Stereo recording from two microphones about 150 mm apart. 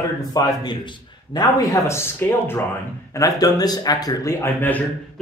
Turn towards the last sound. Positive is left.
turn(degrees=15)  # may be behind; listen again after turning